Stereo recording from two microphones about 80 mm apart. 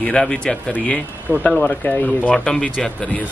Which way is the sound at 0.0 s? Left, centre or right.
Centre.